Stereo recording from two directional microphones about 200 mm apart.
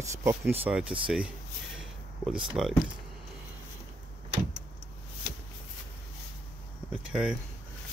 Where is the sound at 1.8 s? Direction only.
Centre (ahead or behind).